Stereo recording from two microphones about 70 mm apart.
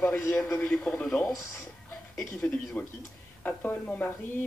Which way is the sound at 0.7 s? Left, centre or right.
Centre.